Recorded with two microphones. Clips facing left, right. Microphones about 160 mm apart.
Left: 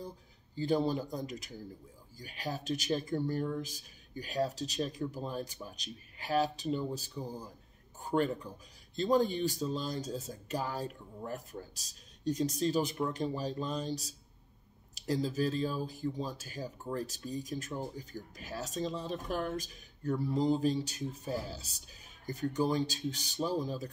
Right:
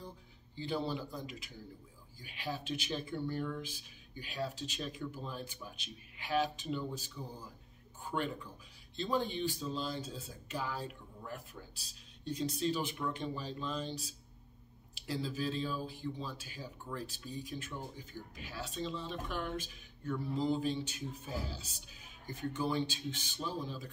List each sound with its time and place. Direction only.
0.6 s a man's voice: 40° left (ahead or behind)